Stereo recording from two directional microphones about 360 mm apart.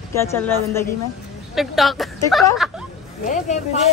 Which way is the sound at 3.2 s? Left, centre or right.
Centre.